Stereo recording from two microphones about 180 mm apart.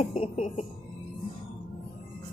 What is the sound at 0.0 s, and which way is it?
Speech, 40° left (ahead or behind).